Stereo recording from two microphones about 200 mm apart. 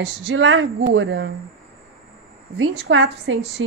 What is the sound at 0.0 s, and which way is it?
Speech, 65° right (ahead or behind).